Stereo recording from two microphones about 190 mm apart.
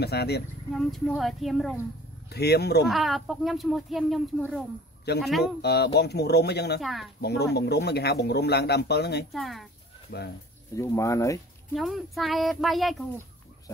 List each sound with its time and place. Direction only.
0.0 s speech: 60° left (ahead or behind)
0.7 s speech: centre (ahead or behind)
2.2 s speech: 60° left (ahead or behind)
2.9 s speech: centre (ahead or behind)
5.6 s speech: 60° left (ahead or behind)
6.8 s speech: centre (ahead or behind)
7.2 s speech: 60° left (ahead or behind)
9.3 s speech: centre (ahead or behind)
10.1 s speech: 50° left (ahead or behind)
10.8 s speech: 15° left (ahead or behind)
11.7 s speech: centre (ahead or behind)